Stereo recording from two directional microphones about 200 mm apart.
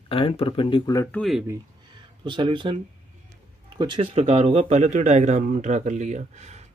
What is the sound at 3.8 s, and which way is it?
Speech, 25° right (ahead or behind).